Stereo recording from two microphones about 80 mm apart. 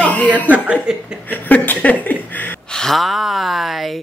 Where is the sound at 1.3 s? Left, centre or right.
Left.